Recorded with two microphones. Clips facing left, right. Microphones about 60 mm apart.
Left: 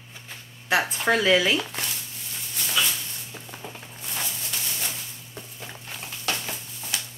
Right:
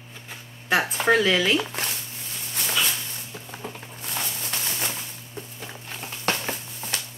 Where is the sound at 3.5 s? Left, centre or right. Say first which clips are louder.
Right 4 dB; centre.